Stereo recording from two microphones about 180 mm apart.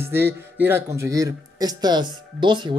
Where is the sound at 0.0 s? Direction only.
15° right (ahead or behind).